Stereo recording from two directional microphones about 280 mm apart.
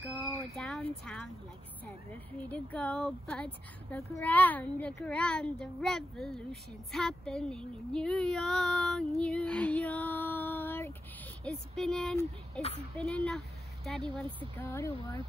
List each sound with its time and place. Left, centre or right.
0.6 s a sound: centre
2.4 s speech: centre
9.2 s child singing: centre
11.4 s speech: centre